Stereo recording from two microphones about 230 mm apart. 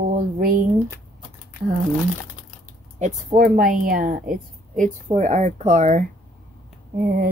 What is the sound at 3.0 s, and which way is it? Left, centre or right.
Speech, right.